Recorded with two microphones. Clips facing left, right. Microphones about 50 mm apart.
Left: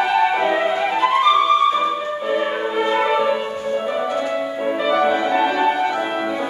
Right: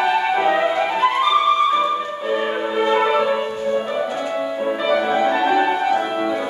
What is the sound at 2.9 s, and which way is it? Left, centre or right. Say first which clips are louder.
Music: right 1 dB; centre.